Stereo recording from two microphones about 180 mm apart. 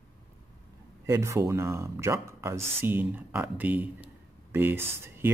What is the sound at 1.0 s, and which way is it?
Speech, 15° right (ahead or behind).